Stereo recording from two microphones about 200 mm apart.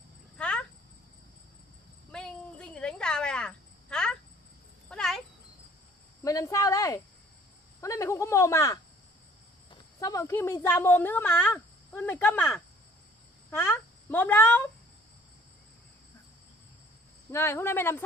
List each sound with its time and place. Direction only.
0.4 s cricket: 5° left (ahead or behind)
2.1 s a sound: 5° left (ahead or behind)
4.8 s cat: centre (ahead or behind)
6.2 s speech: 15° left (ahead or behind)
17.3 s speech: 15° left (ahead or behind)